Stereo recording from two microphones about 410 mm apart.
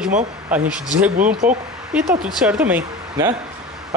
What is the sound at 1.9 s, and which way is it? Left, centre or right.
Speech, centre.